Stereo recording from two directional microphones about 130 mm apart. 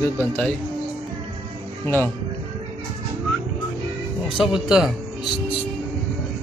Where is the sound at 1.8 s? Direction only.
15° left (ahead or behind).